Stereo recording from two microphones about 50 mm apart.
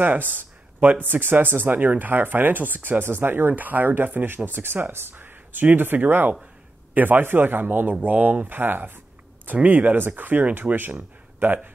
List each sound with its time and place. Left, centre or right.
0.0 s speech: right